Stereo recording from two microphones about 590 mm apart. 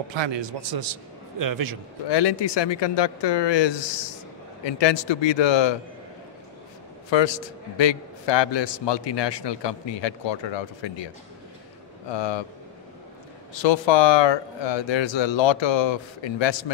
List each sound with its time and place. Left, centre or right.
0.1 s a man's voice: right
2.0 s a man's voice: left
7.1 s a man's voice: left
12.1 s a man's voice: left
13.6 s a man's voice: left